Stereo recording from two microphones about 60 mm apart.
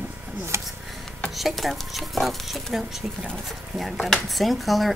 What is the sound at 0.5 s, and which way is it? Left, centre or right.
Speech, right.